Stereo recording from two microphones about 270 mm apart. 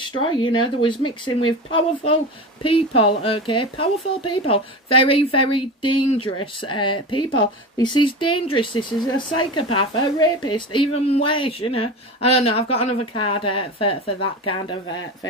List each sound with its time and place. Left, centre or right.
0.3 s a woman's voice: centre